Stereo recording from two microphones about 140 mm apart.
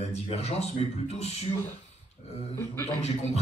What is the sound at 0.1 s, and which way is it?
A man's voice, 45° left (ahead or behind).